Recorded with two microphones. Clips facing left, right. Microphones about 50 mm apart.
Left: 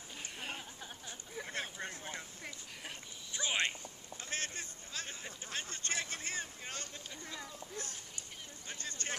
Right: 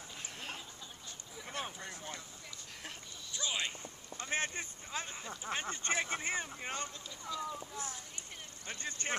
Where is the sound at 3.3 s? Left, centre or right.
Left.